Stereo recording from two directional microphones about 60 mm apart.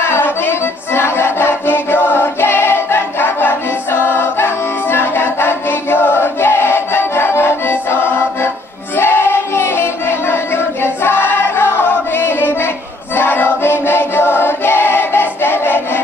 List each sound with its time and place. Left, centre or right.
0.0 s music: left
4.9 s choir: left
8.9 s music: left
13.1 s choir: left